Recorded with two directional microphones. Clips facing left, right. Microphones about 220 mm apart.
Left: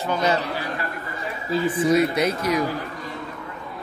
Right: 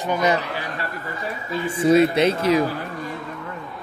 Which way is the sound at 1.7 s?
25° right (ahead or behind).